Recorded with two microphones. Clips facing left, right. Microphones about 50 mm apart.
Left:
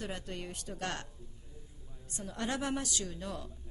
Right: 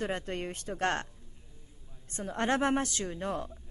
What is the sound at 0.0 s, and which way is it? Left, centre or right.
A woman's voice, right.